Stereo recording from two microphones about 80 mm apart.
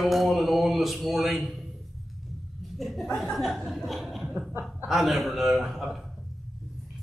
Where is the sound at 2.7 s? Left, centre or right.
Centre.